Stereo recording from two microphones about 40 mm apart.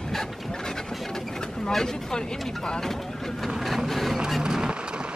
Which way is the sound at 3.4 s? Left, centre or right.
Centre.